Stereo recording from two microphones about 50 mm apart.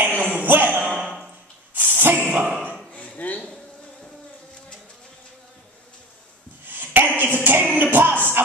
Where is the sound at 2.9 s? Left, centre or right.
Left.